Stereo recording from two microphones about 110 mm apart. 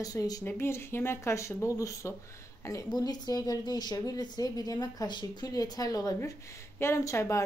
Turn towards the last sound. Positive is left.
turn(degrees=25)  # may be behind; listen again after turning